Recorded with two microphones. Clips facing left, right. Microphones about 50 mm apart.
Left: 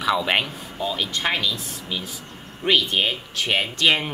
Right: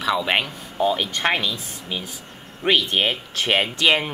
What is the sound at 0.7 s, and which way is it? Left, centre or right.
Speech, right.